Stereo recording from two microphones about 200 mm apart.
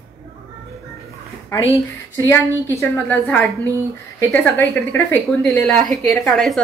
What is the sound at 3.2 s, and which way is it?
A woman's voice, centre (ahead or behind).